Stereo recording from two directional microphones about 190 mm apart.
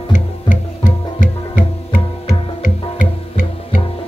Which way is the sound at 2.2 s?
45° left (ahead or behind).